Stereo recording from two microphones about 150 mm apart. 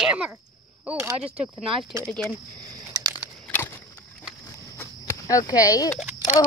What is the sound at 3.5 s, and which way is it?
Vehicle, 15° left (ahead or behind).